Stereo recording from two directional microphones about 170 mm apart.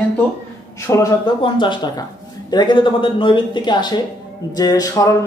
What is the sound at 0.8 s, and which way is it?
Speech, 20° left (ahead or behind).